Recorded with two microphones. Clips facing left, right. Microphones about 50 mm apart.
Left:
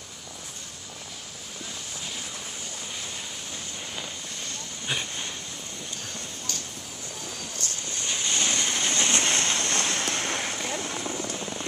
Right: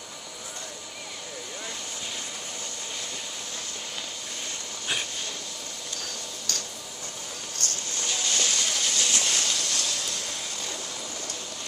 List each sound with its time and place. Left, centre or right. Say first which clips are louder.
7.5 s vehicle: right 3 dB; left